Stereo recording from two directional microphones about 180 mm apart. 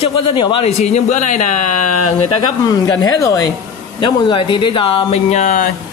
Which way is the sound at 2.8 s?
20° left (ahead or behind).